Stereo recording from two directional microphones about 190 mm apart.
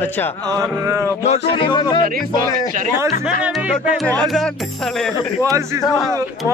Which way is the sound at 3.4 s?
5° right (ahead or behind).